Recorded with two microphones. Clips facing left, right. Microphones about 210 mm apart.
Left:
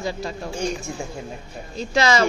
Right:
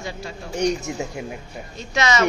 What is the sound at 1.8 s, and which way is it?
Speech, 35° left (ahead or behind).